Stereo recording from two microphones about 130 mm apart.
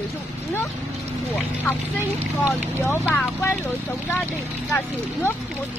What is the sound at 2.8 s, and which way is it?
Speech, 15° left (ahead or behind).